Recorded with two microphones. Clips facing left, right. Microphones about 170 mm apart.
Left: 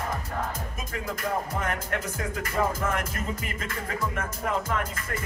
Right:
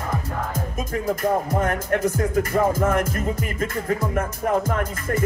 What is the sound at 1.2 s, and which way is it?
Music, 45° right (ahead or behind).